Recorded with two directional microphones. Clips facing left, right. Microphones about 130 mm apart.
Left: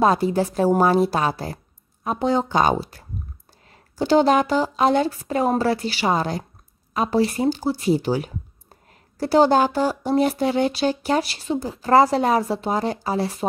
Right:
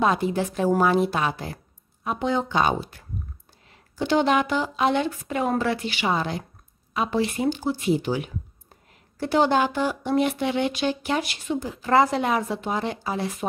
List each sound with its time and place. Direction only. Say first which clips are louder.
0.0 s speech: left 4 dB; 40° left (ahead or behind)